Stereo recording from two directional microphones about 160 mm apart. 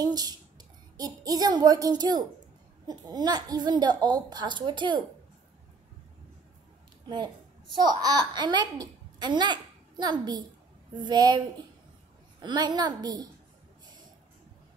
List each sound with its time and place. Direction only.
0.0 s a child's voice: 25° right (ahead or behind)
7.7 s a child's voice: 25° right (ahead or behind)